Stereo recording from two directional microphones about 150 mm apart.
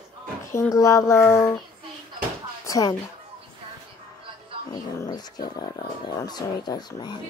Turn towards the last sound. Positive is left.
turn(degrees=30)  # may be behind; listen again after turning